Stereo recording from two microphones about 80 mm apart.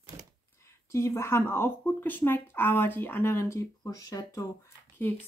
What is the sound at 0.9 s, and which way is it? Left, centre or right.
Speech, left.